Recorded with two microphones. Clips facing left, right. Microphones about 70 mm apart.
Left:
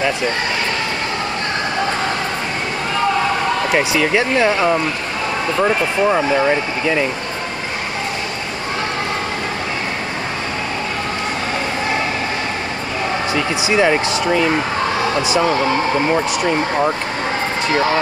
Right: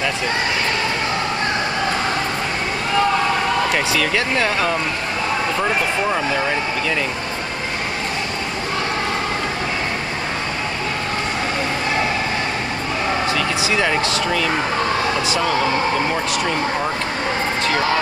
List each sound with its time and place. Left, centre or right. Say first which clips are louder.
3.7 s speech: left 4 dB; centre
13.3 s speech: left 2 dB; left